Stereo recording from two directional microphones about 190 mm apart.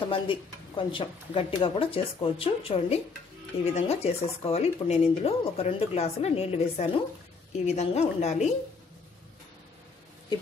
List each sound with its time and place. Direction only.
0.1 s speech: 25° left (ahead or behind)